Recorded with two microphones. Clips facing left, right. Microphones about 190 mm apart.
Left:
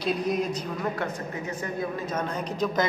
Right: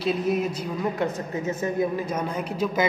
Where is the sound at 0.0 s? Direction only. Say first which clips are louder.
Right 2 dB; 5° right (ahead or behind).